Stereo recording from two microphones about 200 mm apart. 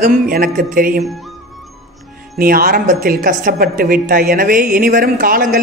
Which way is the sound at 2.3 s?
45° right (ahead or behind).